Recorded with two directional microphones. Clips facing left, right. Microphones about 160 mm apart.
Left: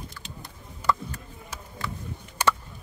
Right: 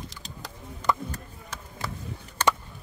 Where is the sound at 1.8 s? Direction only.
40° right (ahead or behind).